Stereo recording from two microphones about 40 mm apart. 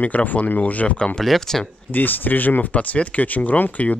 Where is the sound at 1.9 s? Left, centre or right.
Left.